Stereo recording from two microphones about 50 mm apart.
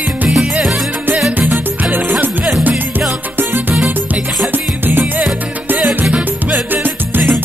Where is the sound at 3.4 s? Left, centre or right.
Right.